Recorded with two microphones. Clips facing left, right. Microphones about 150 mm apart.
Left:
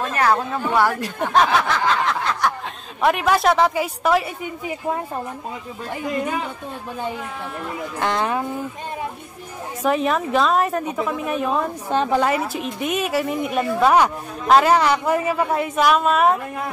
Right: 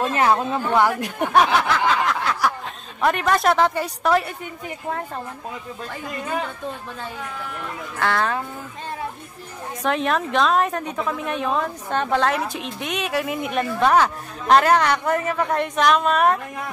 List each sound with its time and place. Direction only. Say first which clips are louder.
0.0 s speech: right 1 dB; 20° right (ahead or behind)
1.9 s snicker: even; 5° right (ahead or behind)
3.0 s a woman's voice: left 2 dB; 5° left (ahead or behind)
8.0 s a woman's voice: even; 20° left (ahead or behind)
9.8 s a woman's voice: left 2 dB; 5° left (ahead or behind)